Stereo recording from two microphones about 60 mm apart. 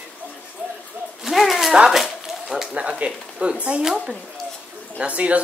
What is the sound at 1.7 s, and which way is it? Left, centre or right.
Speech, centre.